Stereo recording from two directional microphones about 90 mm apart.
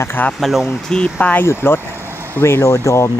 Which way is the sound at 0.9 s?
15° left (ahead or behind).